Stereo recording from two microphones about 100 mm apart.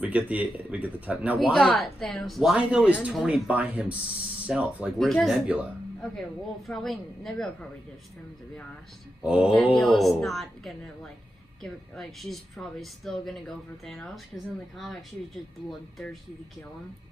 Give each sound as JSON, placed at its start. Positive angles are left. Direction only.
{"t": 0.0, "sound": "speech", "side_deg": -15}
{"t": 1.5, "sound": "speech", "side_deg": 0}
{"t": 2.5, "sound": "speech", "side_deg": -10}
{"t": 3.5, "sound": "speech", "side_deg": -15}
{"t": 4.9, "sound": "speech", "side_deg": 5}
{"t": 6.7, "sound": "speech", "side_deg": 5}
{"t": 9.2, "sound": "speech", "side_deg": -10}
{"t": 9.8, "sound": "speech", "side_deg": 5}